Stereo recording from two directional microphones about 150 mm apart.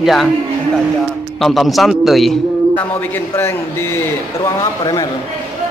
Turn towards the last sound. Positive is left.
turn(degrees=20)  # may be behind; listen again after turning